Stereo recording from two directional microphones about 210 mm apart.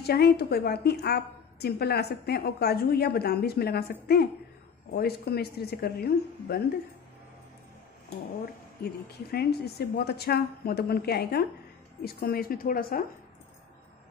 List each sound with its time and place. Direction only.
0.0 s a woman's voice: 50° left (ahead or behind)
9.3 s a woman's voice: 50° left (ahead or behind)